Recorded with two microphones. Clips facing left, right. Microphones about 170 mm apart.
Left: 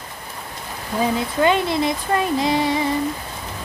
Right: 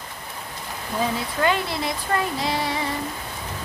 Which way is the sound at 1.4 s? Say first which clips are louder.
Left 5 dB; 20° left (ahead or behind).